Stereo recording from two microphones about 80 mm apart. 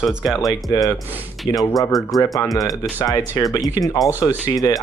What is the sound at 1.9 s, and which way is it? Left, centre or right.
Speech, centre.